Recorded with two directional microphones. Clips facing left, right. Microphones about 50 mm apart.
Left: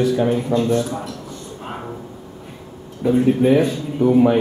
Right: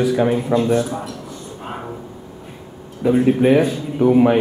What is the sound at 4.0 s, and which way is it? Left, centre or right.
Speech, right.